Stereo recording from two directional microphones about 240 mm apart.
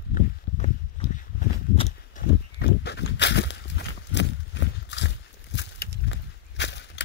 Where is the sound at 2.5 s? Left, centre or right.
Left.